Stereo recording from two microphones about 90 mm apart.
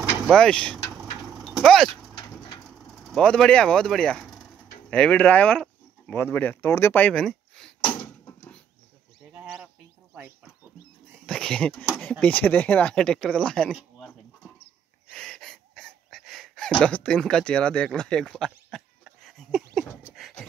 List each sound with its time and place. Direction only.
0.3 s speech: 10° left (ahead or behind)
0.9 s vehicle: centre (ahead or behind)
2.9 s speech: centre (ahead or behind)
6.1 s speech: 25° left (ahead or behind); by 7.7 s 5° left (ahead or behind)
10.1 s a sound: 15° right (ahead or behind)
11.2 s speech: 10° left (ahead or behind)
15.0 s wheeze: 10° left (ahead or behind)
19.2 s a sound: centre (ahead or behind)